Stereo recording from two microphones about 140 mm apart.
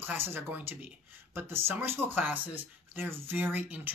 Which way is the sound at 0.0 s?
15° right (ahead or behind).